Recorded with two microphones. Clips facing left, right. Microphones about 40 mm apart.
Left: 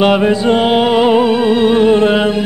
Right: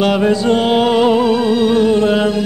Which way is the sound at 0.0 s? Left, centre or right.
Left.